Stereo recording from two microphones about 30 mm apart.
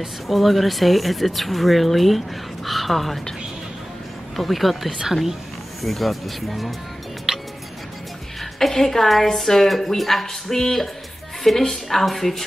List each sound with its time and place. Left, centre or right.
0.3 s speech: centre
4.4 s speech: centre
7.3 s music: right
8.5 s speech: centre